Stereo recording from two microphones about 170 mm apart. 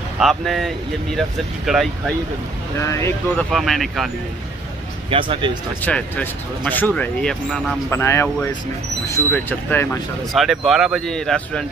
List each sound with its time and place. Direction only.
0.2 s speech: centre (ahead or behind)
2.8 s speech: 15° left (ahead or behind)
3.5 s speech: centre (ahead or behind)
5.1 s speech: 30° right (ahead or behind)
5.8 s speech: 10° left (ahead or behind)
10.3 s speech: centre (ahead or behind)